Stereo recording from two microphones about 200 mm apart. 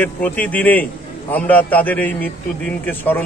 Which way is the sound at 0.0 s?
5° left (ahead or behind).